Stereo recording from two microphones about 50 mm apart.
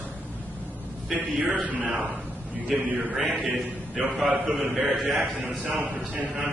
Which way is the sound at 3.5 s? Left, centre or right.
Centre.